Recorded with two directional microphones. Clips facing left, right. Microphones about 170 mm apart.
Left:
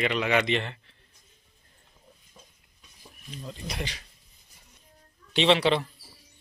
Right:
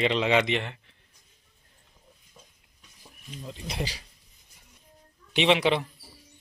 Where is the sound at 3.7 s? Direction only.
35° right (ahead or behind).